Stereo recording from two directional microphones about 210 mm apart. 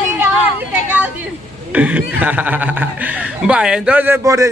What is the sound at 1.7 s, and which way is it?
Speech, 5° right (ahead or behind).